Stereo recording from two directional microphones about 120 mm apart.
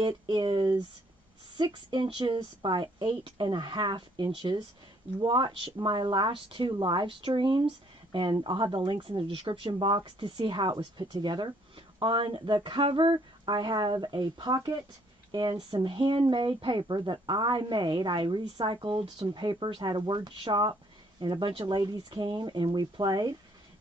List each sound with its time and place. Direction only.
0.0 s speech: 40° right (ahead or behind)
15.5 s speech: 50° right (ahead or behind)